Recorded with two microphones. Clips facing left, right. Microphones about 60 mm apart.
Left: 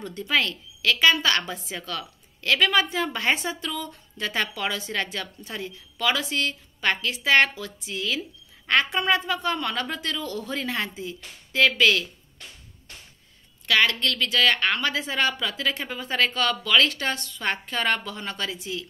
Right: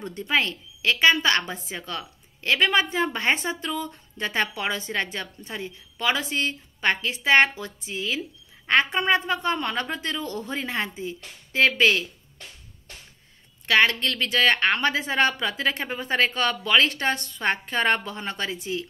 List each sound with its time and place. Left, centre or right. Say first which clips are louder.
0.0 s speech: even; right
13.7 s a woman's voice: right 2 dB; right